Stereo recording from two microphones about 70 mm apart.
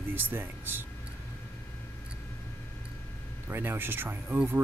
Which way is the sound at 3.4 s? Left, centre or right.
Right.